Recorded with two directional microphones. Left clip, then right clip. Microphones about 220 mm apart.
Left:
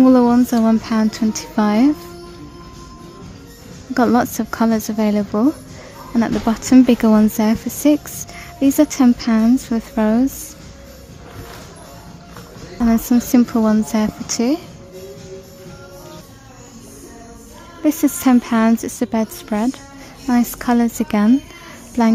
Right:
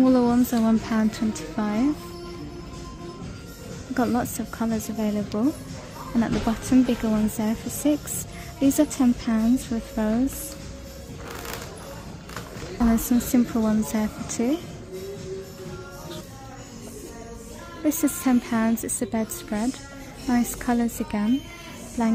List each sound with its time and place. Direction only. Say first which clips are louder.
0.0 s a woman's voice: left 7 dB; 20° left (ahead or behind)
3.9 s a woman's voice: left 9 dB; 20° left (ahead or behind)
12.8 s a woman's voice: left 6 dB; 15° left (ahead or behind)
17.8 s a woman's voice: left 8 dB; 15° left (ahead or behind)